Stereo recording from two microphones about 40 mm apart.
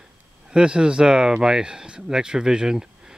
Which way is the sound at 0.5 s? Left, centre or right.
Right.